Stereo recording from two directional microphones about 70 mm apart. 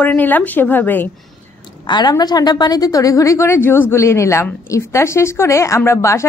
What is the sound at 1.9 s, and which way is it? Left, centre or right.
A woman's voice, left.